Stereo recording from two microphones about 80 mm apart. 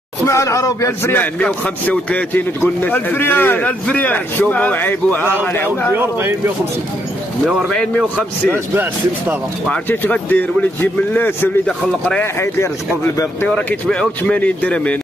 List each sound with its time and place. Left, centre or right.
0.2 s speech: left
1.1 s a man's voice: left
5.9 s speech: right
7.4 s speech: centre
9.8 s a man's voice: left
11.6 s speech: centre
13.8 s speech: centre